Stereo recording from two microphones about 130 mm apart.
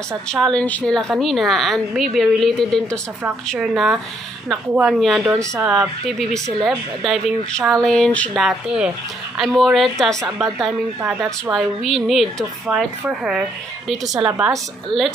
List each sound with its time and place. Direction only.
0.3 s a woman's voice: 5° left (ahead or behind)
5.2 s speech: 20° right (ahead or behind)
5.7 s a woman's voice: centre (ahead or behind)
8.4 s a woman's voice: 5° right (ahead or behind)
14.9 s a woman's voice: 50° left (ahead or behind)